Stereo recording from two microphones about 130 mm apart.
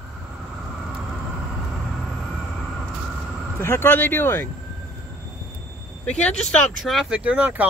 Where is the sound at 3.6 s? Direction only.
20° left (ahead or behind).